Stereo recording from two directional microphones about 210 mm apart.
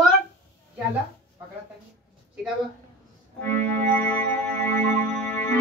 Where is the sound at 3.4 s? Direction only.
10° left (ahead or behind).